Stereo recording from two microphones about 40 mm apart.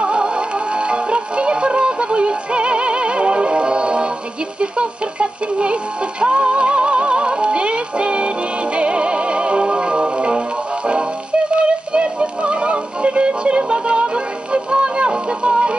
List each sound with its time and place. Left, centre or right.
0.0 s music: right
11.5 s music: right